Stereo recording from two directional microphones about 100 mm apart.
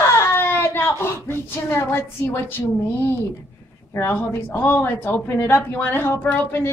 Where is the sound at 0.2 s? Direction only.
20° left (ahead or behind).